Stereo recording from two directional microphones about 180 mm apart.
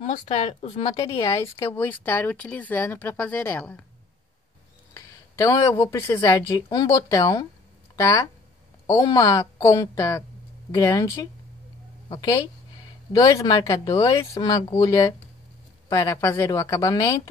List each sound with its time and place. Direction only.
0.0 s speech: 35° left (ahead or behind)
1.1 s speech: 15° left (ahead or behind)
4.9 s a sound: 15° left (ahead or behind)
5.9 s speech: 15° left (ahead or behind)
12.1 s speech: 25° left (ahead or behind)